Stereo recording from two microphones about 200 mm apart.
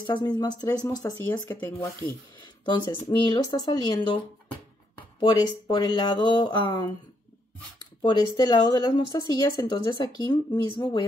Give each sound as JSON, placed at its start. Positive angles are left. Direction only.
{"t": 0.0, "sound": "speech", "side_deg": 20}
{"t": 2.7, "sound": "speech", "side_deg": 25}
{"t": 5.2, "sound": "speech", "side_deg": 20}
{"t": 8.0, "sound": "speech", "side_deg": 20}